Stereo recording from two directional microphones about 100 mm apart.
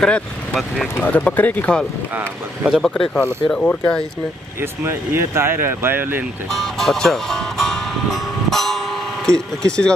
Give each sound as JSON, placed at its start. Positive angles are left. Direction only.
{"t": 0.0, "sound": "speech", "side_deg": 10}
{"t": 2.1, "sound": "speech", "side_deg": -15}
{"t": 2.8, "sound": "speech", "side_deg": 5}
{"t": 4.6, "sound": "speech", "side_deg": -25}
{"t": 6.5, "sound": "speech", "side_deg": 0}